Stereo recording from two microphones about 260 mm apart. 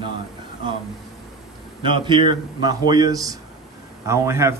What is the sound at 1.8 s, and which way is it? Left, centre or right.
Speech, centre.